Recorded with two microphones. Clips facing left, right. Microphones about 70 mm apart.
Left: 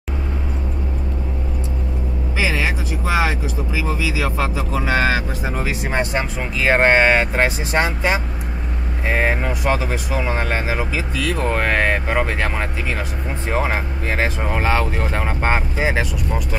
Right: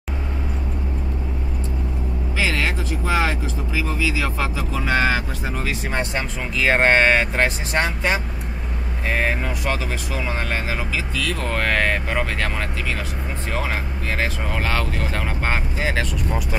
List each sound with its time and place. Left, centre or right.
2.3 s speech: centre
6.6 s speech: centre
9.1 s speech: centre